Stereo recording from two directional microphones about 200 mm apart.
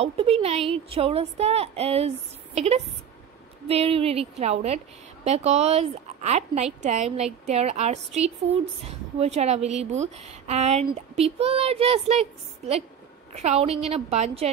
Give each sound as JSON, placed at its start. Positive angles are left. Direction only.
{"t": 0.0, "sound": "a woman's voice", "side_deg": -30}